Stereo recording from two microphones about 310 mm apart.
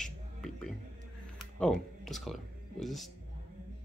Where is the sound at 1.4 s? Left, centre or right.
Centre.